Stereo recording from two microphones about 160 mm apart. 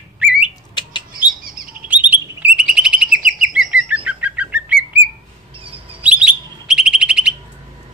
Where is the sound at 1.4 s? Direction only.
65° right (ahead or behind).